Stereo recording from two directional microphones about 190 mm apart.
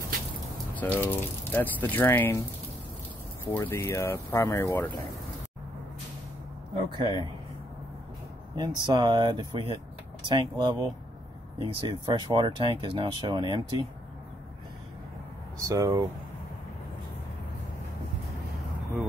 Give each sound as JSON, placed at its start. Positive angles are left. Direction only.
{"t": 0.7, "sound": "speech", "side_deg": 10}
{"t": 3.4, "sound": "speech", "side_deg": 15}
{"t": 6.7, "sound": "speech", "side_deg": -25}
{"t": 8.5, "sound": "speech", "side_deg": -25}
{"t": 15.6, "sound": "speech", "side_deg": -15}